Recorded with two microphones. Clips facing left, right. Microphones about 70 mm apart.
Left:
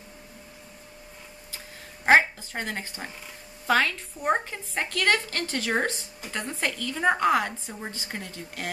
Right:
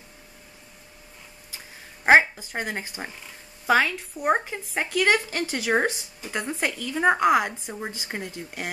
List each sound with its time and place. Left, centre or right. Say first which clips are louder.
2.0 s a woman's voice: right 2 dB; centre